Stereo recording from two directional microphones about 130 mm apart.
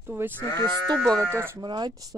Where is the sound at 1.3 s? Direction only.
20° right (ahead or behind).